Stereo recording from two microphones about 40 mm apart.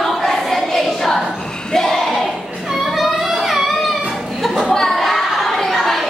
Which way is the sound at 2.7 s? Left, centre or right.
Centre.